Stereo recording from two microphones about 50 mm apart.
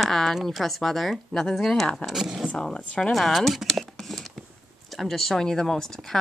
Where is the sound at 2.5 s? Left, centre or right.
Centre.